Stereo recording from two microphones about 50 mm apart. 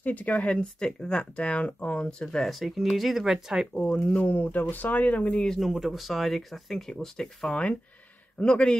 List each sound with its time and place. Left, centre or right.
0.0 s speech: left; by 2.2 s centre
2.2 s speech: centre
3.9 s speech: left
5.6 s speech: centre